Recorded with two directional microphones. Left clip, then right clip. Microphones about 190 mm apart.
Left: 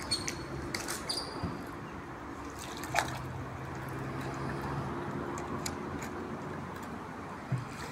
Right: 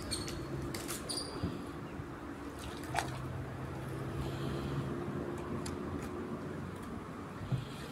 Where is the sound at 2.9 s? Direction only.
20° left (ahead or behind).